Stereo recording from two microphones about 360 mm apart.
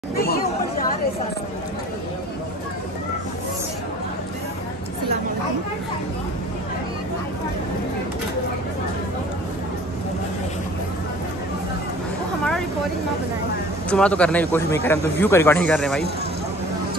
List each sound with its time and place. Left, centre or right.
0.1 s chatter: left
13.8 s a man's voice: centre